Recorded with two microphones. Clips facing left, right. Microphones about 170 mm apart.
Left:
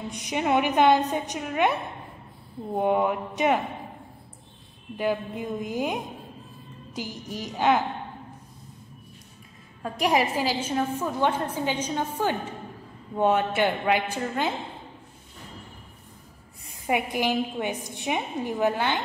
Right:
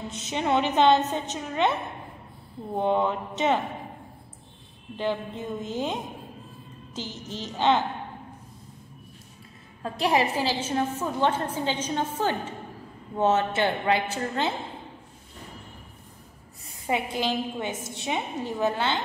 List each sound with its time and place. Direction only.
0.1 s a woman's voice: 15° left (ahead or behind)
4.9 s a woman's voice: 10° left (ahead or behind)
7.0 s a woman's voice: 10° left (ahead or behind)
10.0 s a woman's voice: 10° left (ahead or behind)
16.8 s a woman's voice: 15° left (ahead or behind)